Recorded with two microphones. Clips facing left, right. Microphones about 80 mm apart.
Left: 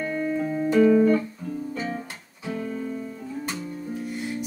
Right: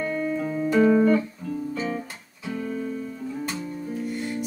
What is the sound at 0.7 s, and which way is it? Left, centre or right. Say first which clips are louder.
Music: left 1 dB; right.